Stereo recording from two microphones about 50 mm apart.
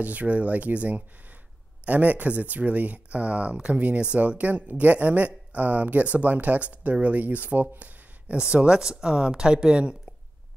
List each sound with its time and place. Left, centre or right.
0.0 s speech: right
7.8 s a sound: right
8.4 s speech: centre